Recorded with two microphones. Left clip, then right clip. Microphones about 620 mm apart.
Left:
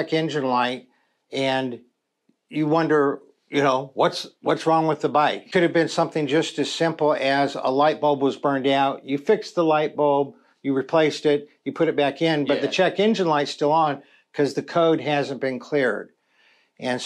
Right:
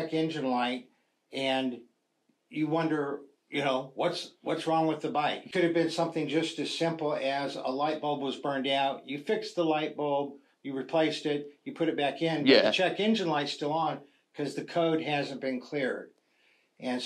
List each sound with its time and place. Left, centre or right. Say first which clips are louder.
0.1 s speech: left 8 dB; left